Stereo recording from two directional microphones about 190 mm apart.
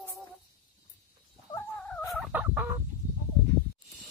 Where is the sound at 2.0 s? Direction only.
Centre (ahead or behind).